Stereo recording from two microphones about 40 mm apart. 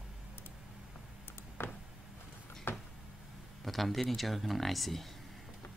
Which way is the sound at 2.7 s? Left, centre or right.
Left.